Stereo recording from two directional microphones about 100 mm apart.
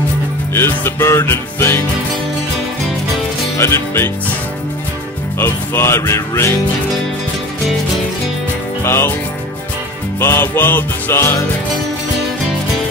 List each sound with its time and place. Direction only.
0.6 s music: 25° left (ahead or behind)
3.5 s music: 25° left (ahead or behind)
5.4 s music: 25° left (ahead or behind)
8.8 s music: 25° left (ahead or behind)
10.2 s music: 20° left (ahead or behind)